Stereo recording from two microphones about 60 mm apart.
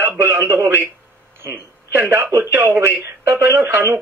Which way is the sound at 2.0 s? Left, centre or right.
Right.